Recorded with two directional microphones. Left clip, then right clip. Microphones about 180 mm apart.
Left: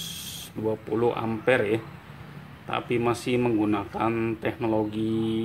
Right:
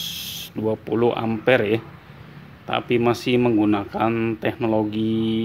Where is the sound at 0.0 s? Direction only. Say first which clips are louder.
Right 7 dB; 40° right (ahead or behind).